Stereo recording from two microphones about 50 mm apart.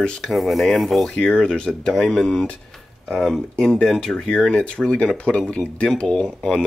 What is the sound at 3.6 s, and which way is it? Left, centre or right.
Speech, centre.